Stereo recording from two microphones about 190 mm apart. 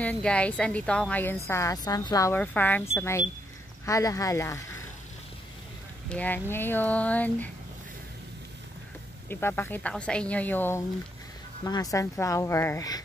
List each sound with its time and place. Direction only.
0.0 s a woman's voice: 5° left (ahead or behind)
6.0 s a woman's voice: 10° left (ahead or behind)
9.3 s a woman's voice: 10° left (ahead or behind)